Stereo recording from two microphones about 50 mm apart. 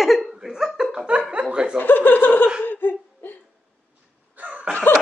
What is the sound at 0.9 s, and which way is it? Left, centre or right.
Chuckle, right.